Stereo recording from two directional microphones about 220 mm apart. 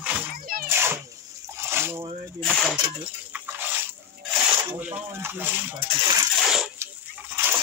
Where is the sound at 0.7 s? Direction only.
10° right (ahead or behind).